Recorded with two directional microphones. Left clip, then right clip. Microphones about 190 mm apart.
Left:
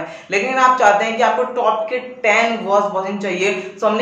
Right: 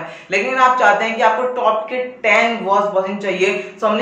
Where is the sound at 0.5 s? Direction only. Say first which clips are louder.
Even; 20° left (ahead or behind).